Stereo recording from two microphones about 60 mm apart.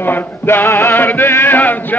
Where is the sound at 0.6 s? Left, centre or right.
Left.